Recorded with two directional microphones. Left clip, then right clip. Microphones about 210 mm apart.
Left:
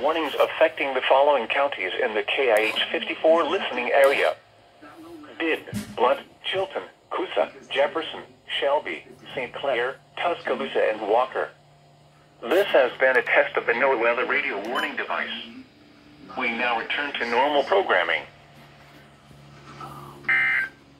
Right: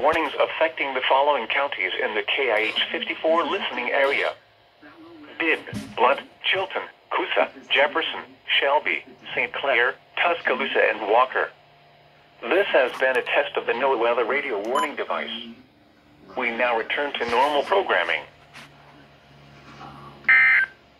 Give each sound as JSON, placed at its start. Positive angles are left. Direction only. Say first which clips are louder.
{"t": 0.0, "sound": "speech", "louder": "right 3 dB", "side_deg": -15}
{"t": 0.3, "sound": "speech", "louder": "left 2 dB", "side_deg": -5}
{"t": 5.4, "sound": "speech", "louder": "right 3 dB", "side_deg": -15}
{"t": 14.0, "sound": "speech", "louder": "even", "side_deg": -50}
{"t": 16.3, "sound": "speech", "louder": "right 2 dB", "side_deg": -45}
{"t": 17.3, "sound": "speech", "louder": "even", "side_deg": -20}
{"t": 20.2, "sound": "a sound", "louder": "right 5 dB", "side_deg": -15}